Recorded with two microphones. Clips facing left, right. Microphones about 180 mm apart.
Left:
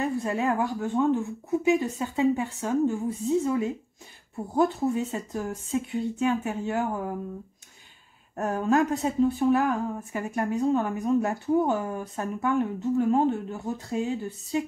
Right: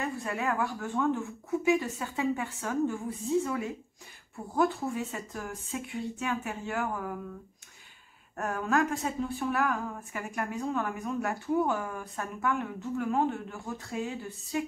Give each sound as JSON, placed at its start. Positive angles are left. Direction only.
{"t": 0.2, "sound": "speech", "side_deg": 25}
{"t": 8.4, "sound": "speech", "side_deg": 25}